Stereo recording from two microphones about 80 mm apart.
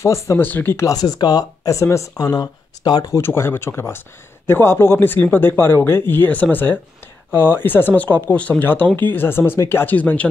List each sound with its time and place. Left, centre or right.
0.0 s speech: left
0.4 s speech: left
0.8 s speech: left
2.3 s speech: left
3.1 s speech: left